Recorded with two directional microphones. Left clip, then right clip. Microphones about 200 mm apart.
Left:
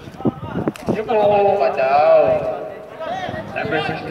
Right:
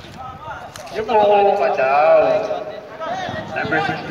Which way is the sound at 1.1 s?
30° left (ahead or behind).